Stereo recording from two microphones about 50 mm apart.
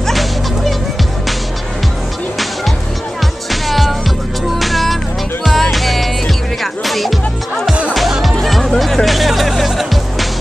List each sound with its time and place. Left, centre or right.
0.0 s music: centre
3.6 s music: centre